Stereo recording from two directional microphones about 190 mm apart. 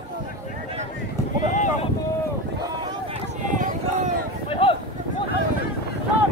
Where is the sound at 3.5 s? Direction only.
40° right (ahead or behind).